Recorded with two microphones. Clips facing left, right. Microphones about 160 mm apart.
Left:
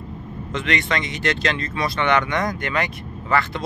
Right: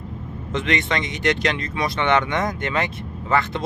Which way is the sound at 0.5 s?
20° right (ahead or behind).